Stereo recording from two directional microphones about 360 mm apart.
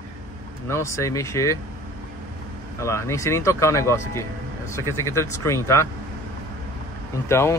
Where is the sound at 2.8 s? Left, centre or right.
Centre.